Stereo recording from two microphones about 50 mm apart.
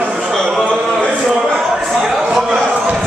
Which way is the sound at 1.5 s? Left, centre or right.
Centre.